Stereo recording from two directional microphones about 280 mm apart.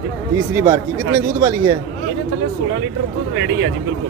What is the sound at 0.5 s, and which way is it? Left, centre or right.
Speech, centre.